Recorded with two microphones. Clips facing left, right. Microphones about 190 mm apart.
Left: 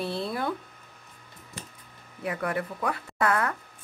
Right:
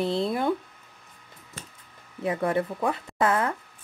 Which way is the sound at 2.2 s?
25° right (ahead or behind).